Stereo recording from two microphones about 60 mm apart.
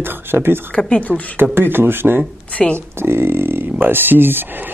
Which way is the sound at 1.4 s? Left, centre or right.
Right.